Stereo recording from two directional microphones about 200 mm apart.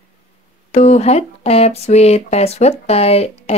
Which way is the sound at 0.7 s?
35° left (ahead or behind).